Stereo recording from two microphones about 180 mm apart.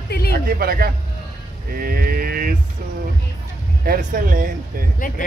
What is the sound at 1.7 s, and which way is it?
Mantra, 55° right (ahead or behind).